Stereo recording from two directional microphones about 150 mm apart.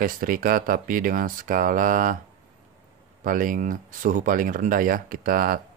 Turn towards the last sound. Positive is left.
turn(degrees=-70)  # may be behind; listen again after turning